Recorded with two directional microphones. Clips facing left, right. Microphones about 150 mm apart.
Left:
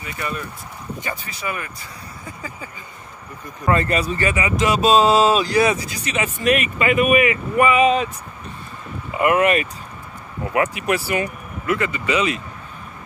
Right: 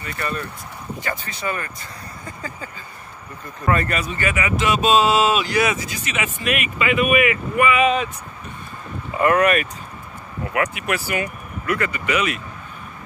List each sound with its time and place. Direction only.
1.0 s speech: 10° left (ahead or behind)
3.6 s speech: 30° left (ahead or behind)
9.1 s speech: 20° left (ahead or behind)